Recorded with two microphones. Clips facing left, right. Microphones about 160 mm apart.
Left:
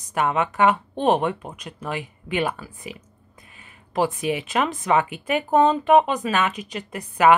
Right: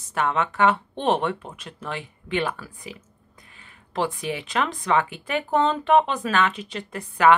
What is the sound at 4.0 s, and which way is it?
Speech, 20° left (ahead or behind).